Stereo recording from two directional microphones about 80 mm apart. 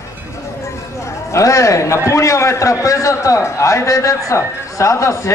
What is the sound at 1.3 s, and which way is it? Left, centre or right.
A man's voice, left.